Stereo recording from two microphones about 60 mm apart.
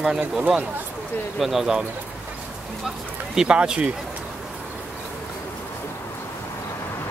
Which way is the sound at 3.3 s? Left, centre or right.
Centre.